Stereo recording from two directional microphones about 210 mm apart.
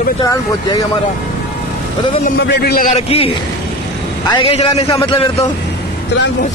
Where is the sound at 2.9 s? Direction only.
25° left (ahead or behind).